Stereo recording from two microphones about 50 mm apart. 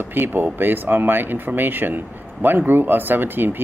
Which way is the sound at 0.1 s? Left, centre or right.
Right.